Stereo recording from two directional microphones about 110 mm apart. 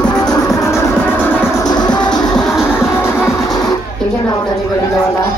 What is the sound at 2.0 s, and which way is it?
Music, 5° left (ahead or behind).